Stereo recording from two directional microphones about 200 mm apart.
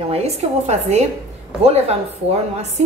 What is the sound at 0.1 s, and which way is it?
A woman's voice, 30° right (ahead or behind).